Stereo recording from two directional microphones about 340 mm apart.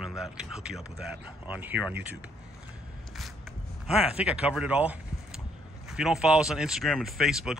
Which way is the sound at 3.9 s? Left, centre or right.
Centre.